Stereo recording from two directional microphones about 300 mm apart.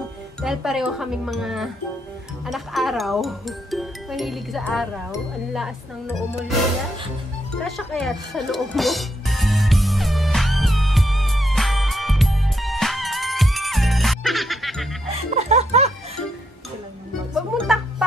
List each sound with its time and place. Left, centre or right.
0.4 s speech: centre
7.6 s music: centre
15.3 s music: right
17.3 s music: centre